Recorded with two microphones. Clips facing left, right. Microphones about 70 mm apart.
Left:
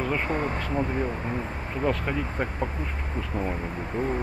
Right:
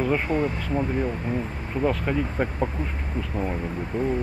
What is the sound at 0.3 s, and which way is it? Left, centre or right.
Speech, left.